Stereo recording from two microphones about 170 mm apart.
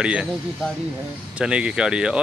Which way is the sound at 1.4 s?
5° right (ahead or behind).